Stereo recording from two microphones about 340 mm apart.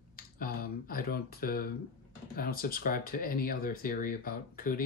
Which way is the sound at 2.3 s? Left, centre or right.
Left.